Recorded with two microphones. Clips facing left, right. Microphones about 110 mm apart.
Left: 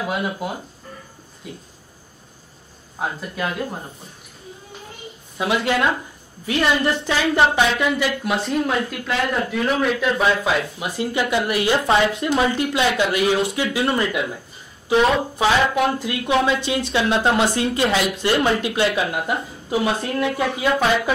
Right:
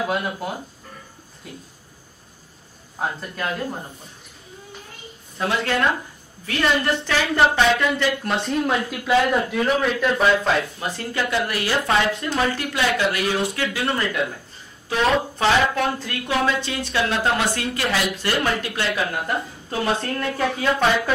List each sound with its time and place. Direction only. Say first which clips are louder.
0.0 s a man's voice: even; centre (ahead or behind)
3.0 s a man's voice: left 1 dB; 5° left (ahead or behind)
5.4 s speech: left 2 dB; 10° left (ahead or behind)
7.1 s speech: left 1 dB; 15° left (ahead or behind)